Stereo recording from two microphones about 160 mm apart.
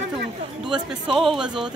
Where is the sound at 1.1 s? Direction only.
Centre (ahead or behind).